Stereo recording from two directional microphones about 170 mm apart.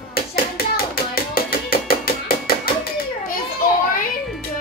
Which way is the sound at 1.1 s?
60° left (ahead or behind).